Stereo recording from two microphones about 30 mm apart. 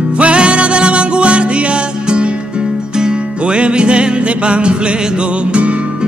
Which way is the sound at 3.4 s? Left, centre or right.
Right.